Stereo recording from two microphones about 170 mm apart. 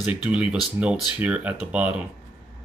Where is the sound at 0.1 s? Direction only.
5° right (ahead or behind).